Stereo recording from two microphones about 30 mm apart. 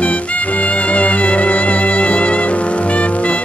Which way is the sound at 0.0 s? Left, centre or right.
Left.